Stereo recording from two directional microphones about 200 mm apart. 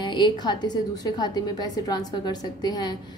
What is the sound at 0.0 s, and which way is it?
A woman's voice, 20° left (ahead or behind).